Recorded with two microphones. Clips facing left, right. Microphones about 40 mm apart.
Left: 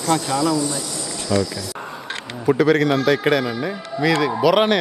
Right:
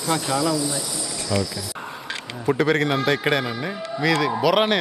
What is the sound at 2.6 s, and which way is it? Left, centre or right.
A man's voice, centre.